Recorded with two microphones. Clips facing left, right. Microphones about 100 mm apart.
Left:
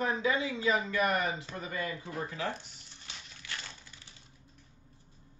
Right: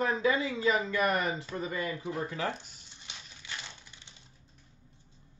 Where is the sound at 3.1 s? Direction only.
20° right (ahead or behind).